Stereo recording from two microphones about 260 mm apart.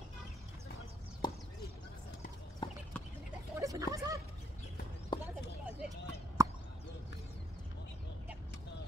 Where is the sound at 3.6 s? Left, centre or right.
Centre.